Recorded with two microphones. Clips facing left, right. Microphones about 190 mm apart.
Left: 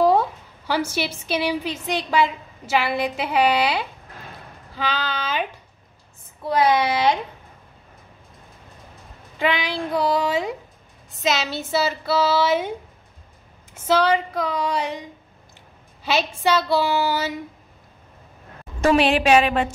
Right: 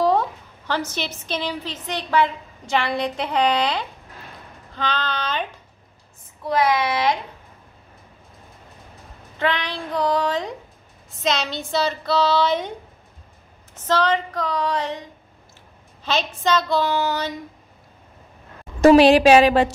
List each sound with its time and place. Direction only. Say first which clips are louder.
0.0 s a woman's voice: left 2 dB; 10° left (ahead or behind)
6.6 s speech: left 2 dB; 25° left (ahead or behind)
9.4 s a woman's voice: left 1 dB; 10° left (ahead or behind)
13.7 s a woman's voice: left 2 dB; 10° left (ahead or behind)
18.8 s a woman's voice: right 6 dB; 40° right (ahead or behind)